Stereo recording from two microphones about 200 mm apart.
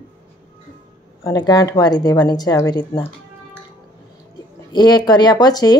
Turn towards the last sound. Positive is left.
turn(degrees=20)  # may be behind; listen again after turning